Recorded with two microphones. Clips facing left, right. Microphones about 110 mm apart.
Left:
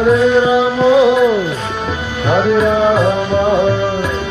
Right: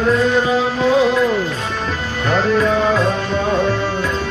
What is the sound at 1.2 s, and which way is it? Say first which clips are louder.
Music: left 4 dB; 15° left (ahead or behind).